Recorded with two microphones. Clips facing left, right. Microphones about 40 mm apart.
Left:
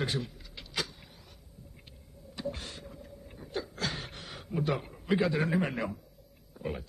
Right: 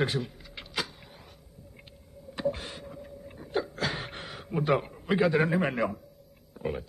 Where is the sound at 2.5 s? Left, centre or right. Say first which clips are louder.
Right 7 dB; centre.